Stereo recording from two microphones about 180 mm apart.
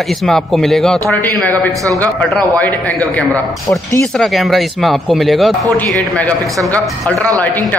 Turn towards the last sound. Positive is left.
turn(degrees=10)  # may be behind; listen again after turning